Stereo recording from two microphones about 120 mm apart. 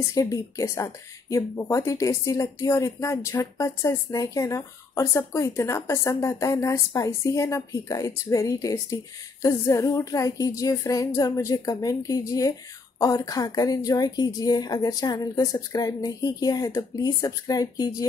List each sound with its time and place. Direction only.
0.1 s a woman's voice: 30° left (ahead or behind)